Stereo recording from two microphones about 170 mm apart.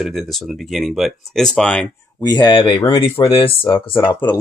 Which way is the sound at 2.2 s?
25° left (ahead or behind).